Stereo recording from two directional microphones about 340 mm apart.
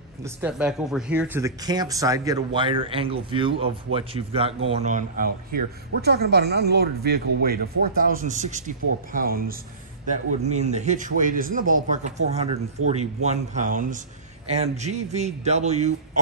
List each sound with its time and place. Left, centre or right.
0.2 s speech: centre